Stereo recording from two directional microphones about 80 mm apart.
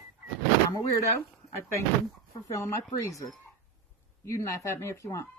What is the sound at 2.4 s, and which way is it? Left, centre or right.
Speech, left.